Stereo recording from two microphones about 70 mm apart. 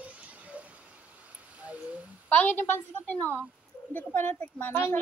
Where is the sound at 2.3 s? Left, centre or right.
Left.